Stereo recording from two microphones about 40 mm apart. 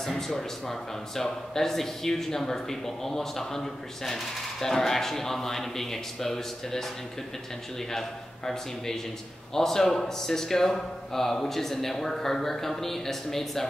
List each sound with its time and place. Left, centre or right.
0.3 s speech: centre
8.5 s speech: centre